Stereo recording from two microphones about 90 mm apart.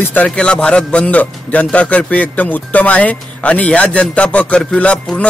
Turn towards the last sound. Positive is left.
turn(degrees=15)  # may be behind; listen again after turning